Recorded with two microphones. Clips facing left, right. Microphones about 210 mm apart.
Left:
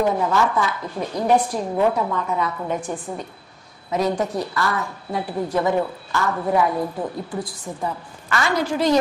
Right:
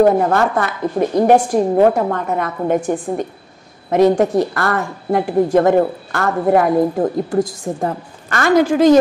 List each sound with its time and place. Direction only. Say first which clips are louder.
0.0 s a woman's voice: right 7 dB; 55° right (ahead or behind)
1.5 s a woman's voice: right 8 dB; 50° right (ahead or behind)